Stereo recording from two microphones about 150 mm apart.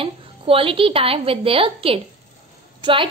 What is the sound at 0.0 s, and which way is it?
A woman's voice, 40° right (ahead or behind).